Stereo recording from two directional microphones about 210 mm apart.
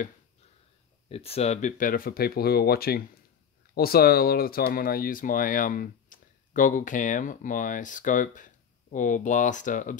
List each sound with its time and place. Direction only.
1.0 s speech: 30° left (ahead or behind)